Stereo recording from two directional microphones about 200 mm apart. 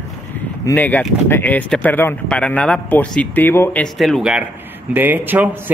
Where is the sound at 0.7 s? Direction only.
10° left (ahead or behind).